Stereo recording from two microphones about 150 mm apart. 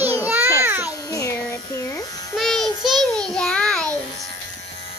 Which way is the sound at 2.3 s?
Centre (ahead or behind).